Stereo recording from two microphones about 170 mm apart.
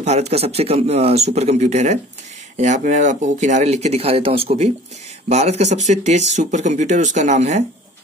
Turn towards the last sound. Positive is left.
turn(degrees=-45)  # may be behind; listen again after turning